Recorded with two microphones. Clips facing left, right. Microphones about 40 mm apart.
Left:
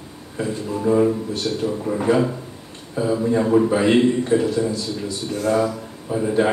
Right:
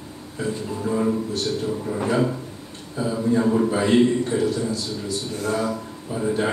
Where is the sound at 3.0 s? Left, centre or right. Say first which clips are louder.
Left 2 dB; left.